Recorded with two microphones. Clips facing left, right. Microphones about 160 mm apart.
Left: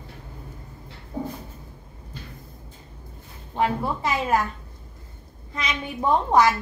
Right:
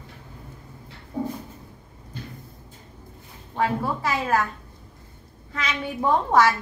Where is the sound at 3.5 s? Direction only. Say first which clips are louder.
Even; 20° left (ahead or behind).